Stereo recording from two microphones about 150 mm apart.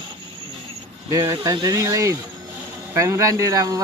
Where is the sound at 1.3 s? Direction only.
25° right (ahead or behind).